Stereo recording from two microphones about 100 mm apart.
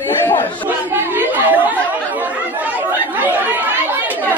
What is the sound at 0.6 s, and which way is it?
Chatter, 20° right (ahead or behind).